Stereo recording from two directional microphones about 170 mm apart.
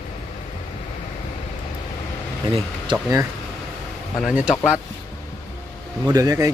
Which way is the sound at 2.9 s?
20° right (ahead or behind).